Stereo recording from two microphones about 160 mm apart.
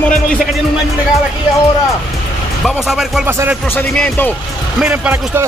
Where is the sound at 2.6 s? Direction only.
Centre (ahead or behind).